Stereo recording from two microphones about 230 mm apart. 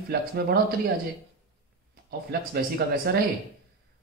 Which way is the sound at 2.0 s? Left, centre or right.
Right.